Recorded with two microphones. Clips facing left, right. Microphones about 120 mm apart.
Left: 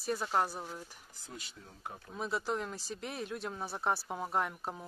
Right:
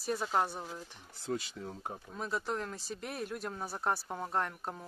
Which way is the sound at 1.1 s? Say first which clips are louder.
Right 14 dB; 70° right (ahead or behind).